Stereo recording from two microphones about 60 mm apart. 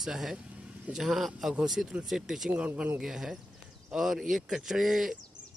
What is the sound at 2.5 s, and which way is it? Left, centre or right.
Speech, right.